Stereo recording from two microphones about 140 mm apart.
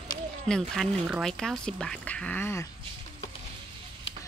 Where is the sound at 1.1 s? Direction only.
Centre (ahead or behind); by 2.6 s 15° left (ahead or behind).